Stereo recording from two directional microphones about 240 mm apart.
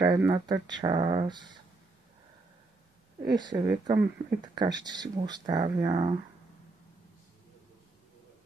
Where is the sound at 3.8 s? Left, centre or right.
Centre.